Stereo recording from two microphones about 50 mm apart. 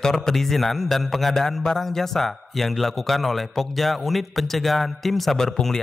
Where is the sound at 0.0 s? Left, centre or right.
Centre.